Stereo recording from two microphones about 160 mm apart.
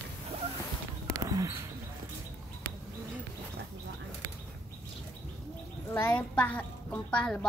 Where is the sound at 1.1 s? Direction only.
20° right (ahead or behind).